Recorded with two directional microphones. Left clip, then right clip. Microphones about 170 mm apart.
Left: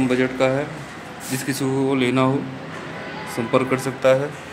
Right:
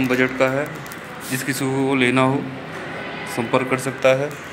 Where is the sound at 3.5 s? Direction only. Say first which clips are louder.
Left 1 dB; 15° left (ahead or behind).